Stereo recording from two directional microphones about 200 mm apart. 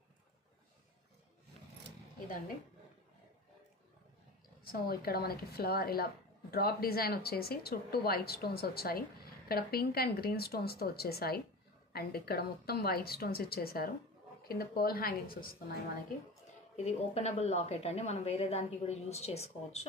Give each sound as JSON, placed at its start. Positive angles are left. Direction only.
{"t": 4.6, "sound": "speech", "side_deg": 50}
{"t": 16.7, "sound": "a woman's voice", "side_deg": 35}